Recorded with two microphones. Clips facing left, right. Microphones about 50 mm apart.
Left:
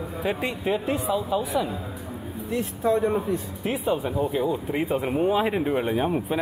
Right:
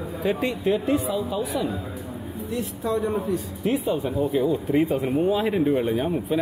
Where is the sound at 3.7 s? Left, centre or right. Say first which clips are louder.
Right 2 dB; centre.